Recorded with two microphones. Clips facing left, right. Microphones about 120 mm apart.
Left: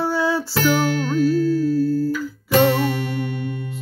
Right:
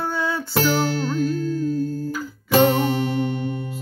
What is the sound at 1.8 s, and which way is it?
Guitar, 40° left (ahead or behind).